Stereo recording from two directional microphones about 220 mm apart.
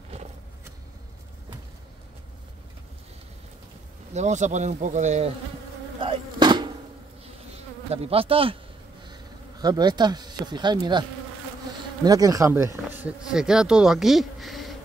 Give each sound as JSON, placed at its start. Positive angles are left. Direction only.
{"t": 4.1, "sound": "speech", "side_deg": -30}
{"t": 5.9, "sound": "insect", "side_deg": -20}
{"t": 9.0, "sound": "speech", "side_deg": -20}